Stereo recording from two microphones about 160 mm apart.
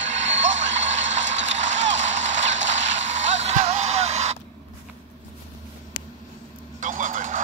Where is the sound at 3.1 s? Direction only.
45° right (ahead or behind).